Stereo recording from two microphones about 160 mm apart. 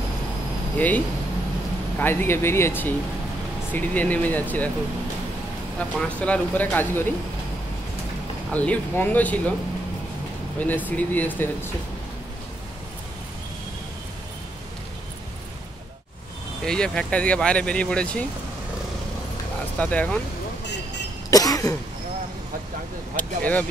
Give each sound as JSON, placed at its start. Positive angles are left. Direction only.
{"t": 0.7, "sound": "speech", "side_deg": 10}
{"t": 5.8, "sound": "speech", "side_deg": 5}
{"t": 8.5, "sound": "speech", "side_deg": 10}
{"t": 10.9, "sound": "speech", "side_deg": 10}
{"t": 16.6, "sound": "speech", "side_deg": 5}
{"t": 19.8, "sound": "speech", "side_deg": 10}
{"t": 20.6, "sound": "vehicle", "side_deg": 90}
{"t": 21.3, "sound": "cough", "side_deg": 20}
{"t": 23.1, "sound": "speech", "side_deg": 10}